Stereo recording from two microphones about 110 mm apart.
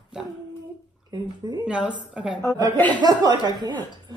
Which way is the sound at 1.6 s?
10° right (ahead or behind).